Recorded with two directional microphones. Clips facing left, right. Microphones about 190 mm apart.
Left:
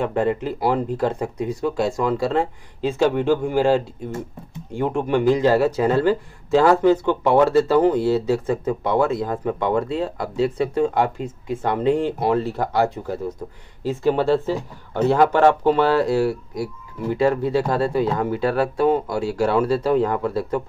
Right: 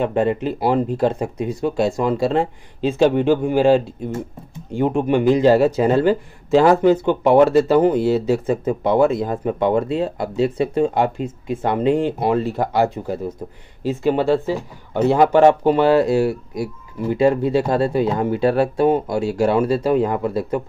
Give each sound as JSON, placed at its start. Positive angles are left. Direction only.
{"t": 0.0, "sound": "speech", "side_deg": -20}